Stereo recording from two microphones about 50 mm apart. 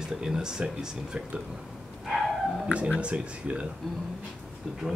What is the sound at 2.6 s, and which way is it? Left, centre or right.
Speech, right.